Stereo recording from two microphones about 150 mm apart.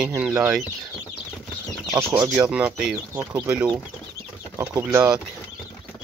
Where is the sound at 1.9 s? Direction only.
20° right (ahead or behind).